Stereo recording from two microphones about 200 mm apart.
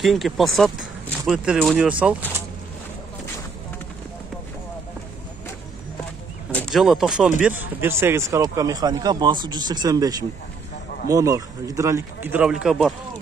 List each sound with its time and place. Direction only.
0.0 s speech: centre (ahead or behind)
6.5 s speech: centre (ahead or behind)